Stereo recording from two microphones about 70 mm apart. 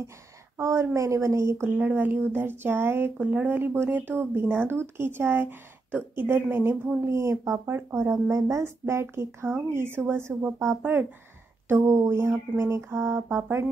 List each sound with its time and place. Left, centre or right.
0.6 s a woman's voice: right
1.8 s speech: right
11.9 s speech: right